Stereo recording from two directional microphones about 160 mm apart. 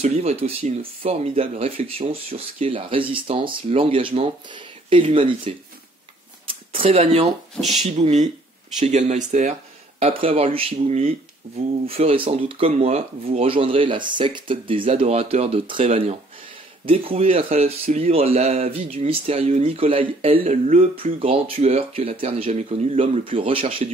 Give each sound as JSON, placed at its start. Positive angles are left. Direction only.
{"t": 0.0, "sound": "speech", "side_deg": -40}
{"t": 6.4, "sound": "a sound", "side_deg": -35}
{"t": 7.6, "sound": "speech", "side_deg": 0}
{"t": 8.0, "sound": "speech", "side_deg": -45}